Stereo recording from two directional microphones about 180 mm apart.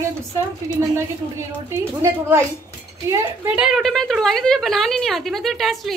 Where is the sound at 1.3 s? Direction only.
15° right (ahead or behind).